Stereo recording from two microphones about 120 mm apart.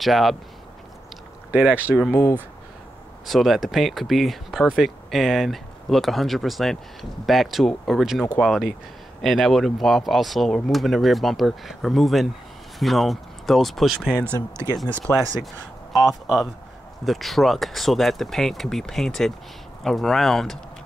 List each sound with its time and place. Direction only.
0.0 s speech: centre (ahead or behind)
1.5 s speech: 10° right (ahead or behind)
2.0 s speech: 25° left (ahead or behind)
3.3 s speech: centre (ahead or behind)
14.9 s speech: 10° left (ahead or behind)
15.1 s speech: centre (ahead or behind)